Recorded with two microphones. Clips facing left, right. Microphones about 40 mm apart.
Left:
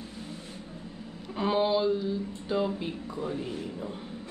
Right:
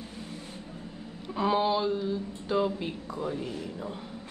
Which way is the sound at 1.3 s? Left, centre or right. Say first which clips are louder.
Even; centre.